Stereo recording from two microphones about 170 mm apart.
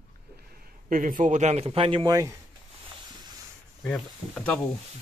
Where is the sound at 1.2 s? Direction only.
45° right (ahead or behind); by 2.3 s 20° right (ahead or behind).